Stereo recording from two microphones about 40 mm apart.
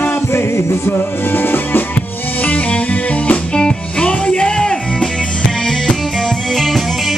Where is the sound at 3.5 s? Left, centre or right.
Left.